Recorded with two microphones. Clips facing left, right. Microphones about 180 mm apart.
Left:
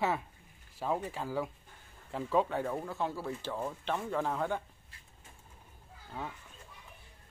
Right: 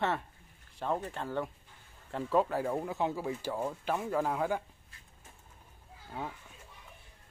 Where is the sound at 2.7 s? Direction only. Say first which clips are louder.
Right 3 dB; 15° right (ahead or behind).